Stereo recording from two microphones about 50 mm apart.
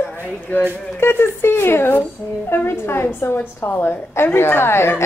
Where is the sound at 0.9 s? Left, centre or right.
Left.